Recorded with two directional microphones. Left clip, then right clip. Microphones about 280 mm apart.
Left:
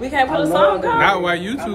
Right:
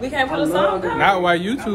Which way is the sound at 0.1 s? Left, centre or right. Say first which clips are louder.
Left 4 dB; left.